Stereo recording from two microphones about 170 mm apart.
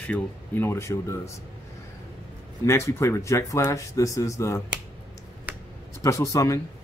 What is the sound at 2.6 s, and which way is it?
Speech, 15° left (ahead or behind).